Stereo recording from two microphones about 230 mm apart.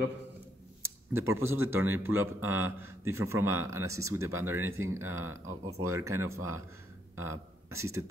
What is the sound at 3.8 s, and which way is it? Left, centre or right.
Speech, right.